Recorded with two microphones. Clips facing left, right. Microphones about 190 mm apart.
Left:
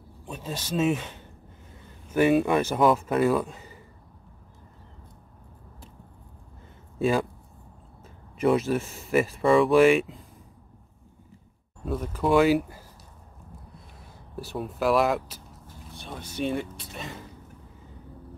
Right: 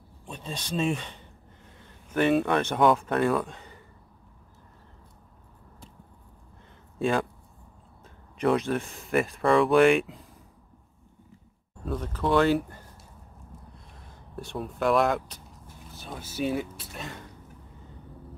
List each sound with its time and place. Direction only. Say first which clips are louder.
0.3 s speech: left 2 dB; 5° left (ahead or behind)
7.0 s speech: left 2 dB; 5° left (ahead or behind)
8.4 s speech: left 2 dB; 5° left (ahead or behind)
11.8 s speech: left 2 dB; 10° left (ahead or behind)
14.3 s speech: left 2 dB; 5° left (ahead or behind)